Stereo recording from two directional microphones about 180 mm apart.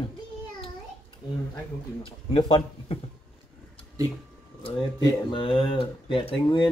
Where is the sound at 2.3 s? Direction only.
25° left (ahead or behind).